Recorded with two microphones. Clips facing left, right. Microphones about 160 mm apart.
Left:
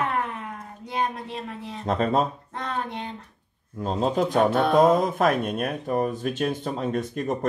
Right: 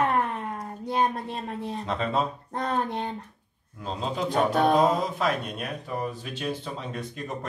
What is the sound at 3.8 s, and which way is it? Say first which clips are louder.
Speech: left 6 dB; 45° left (ahead or behind).